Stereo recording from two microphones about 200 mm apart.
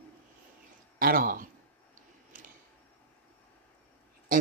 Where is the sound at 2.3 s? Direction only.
40° right (ahead or behind).